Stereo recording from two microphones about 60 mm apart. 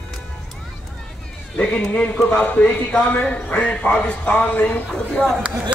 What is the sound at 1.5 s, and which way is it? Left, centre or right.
A man's voice, left.